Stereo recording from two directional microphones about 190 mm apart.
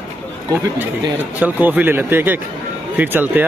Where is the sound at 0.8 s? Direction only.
10° right (ahead or behind).